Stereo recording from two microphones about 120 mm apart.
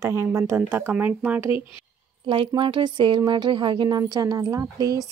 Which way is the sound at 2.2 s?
45° right (ahead or behind).